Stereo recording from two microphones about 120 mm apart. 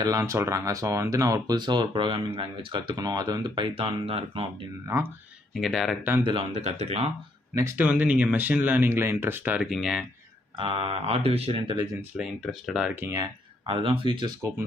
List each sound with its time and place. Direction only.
0.0 s speech: 30° right (ahead or behind); by 4.5 s 50° right (ahead or behind)
4.8 s speech: 25° right (ahead or behind)
5.5 s speech: centre (ahead or behind)
6.5 s speech: 65° right (ahead or behind)
7.5 s speech: 25° right (ahead or behind)
7.8 s speech: 10° right (ahead or behind)
10.6 s speech: 50° right (ahead or behind)
12.2 s speech: centre (ahead or behind)
13.0 s speech: 25° right (ahead or behind)
13.7 s speech: 50° right (ahead or behind)